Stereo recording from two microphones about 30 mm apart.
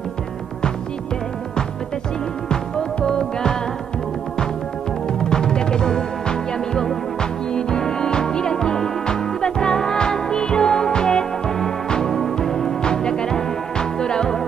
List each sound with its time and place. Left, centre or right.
5.0 s music: left
12.8 s music: left